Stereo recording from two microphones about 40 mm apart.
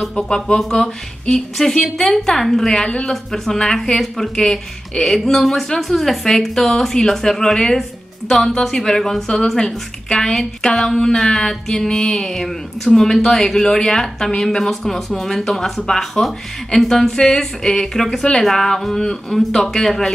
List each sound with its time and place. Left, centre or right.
0.1 s speech: left
2.7 s speech: left
3.1 s speech: centre
5.2 s a woman's voice: centre
10.3 s speech: centre